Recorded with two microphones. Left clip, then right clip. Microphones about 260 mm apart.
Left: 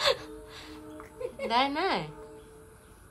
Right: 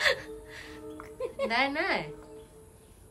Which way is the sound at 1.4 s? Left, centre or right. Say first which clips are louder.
Left 1 dB; centre.